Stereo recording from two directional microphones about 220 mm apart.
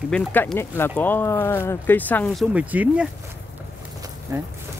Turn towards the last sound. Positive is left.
turn(degrees=-15)  # may be behind; listen again after turning